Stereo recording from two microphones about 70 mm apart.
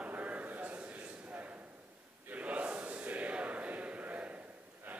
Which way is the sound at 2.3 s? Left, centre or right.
Centre.